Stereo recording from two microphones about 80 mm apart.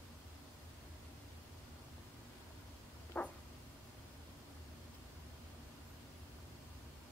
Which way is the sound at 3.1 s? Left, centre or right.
Centre.